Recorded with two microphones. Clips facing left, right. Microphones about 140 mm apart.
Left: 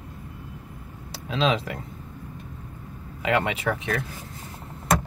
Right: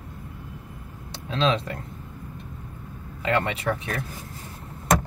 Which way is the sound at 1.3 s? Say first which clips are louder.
Even; 5° left (ahead or behind).